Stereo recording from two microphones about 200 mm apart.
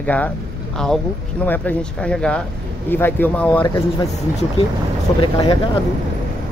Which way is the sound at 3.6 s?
20° left (ahead or behind).